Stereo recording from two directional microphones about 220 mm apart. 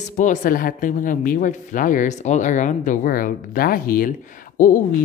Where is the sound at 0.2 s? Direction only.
35° left (ahead or behind).